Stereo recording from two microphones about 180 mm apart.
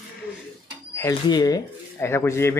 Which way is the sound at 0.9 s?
15° left (ahead or behind).